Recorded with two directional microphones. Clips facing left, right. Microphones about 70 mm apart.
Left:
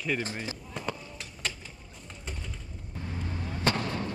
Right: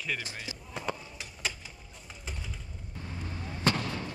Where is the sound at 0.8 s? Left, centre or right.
Centre.